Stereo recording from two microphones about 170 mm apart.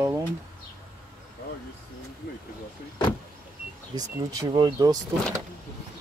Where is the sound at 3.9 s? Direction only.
20° right (ahead or behind).